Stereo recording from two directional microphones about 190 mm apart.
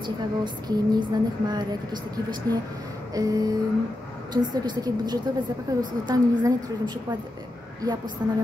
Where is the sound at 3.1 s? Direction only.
20° right (ahead or behind).